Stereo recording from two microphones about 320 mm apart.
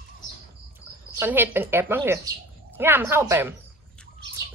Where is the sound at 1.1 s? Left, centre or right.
Centre.